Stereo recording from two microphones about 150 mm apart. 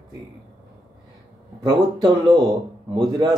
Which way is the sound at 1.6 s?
30° right (ahead or behind).